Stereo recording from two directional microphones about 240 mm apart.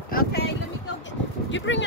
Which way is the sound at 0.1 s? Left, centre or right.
Left.